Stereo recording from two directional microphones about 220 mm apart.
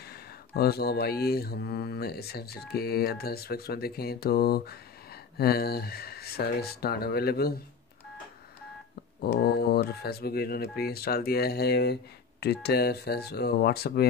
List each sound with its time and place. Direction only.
0.0 s speech: 45° left (ahead or behind)
9.2 s speech: 45° left (ahead or behind)